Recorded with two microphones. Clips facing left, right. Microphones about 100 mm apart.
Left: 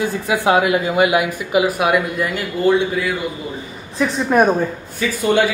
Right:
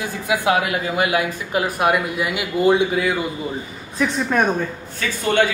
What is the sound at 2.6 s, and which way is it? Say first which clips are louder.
Speech: left 1 dB; 20° right (ahead or behind).